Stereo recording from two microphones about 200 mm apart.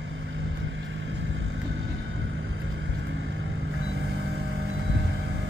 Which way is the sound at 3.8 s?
70° right (ahead or behind).